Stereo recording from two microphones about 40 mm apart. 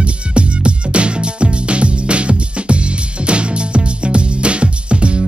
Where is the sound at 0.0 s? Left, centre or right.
Right.